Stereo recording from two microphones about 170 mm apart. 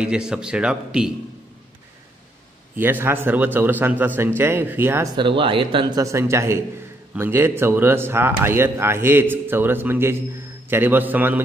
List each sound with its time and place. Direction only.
0.0 s a man's voice: 5° right (ahead or behind)
2.7 s speech: 10° right (ahead or behind)
5.1 s a man's voice: 30° right (ahead or behind); by 11.4 s 10° right (ahead or behind)